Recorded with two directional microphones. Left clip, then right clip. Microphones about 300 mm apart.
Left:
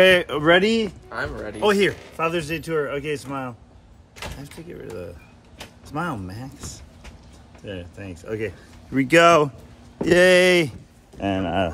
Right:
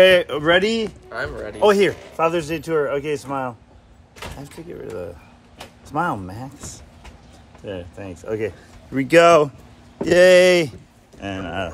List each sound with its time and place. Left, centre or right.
0.0 s speech: centre
1.5 s speech: centre
8.9 s speech: centre
11.1 s speech: left